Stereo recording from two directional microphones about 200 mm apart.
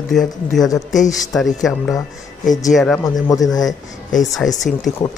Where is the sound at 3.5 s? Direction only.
20° left (ahead or behind).